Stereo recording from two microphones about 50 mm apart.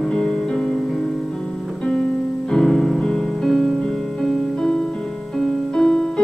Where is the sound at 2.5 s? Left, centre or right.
Centre.